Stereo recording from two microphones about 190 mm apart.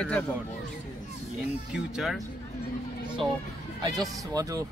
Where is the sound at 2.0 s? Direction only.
Centre (ahead or behind).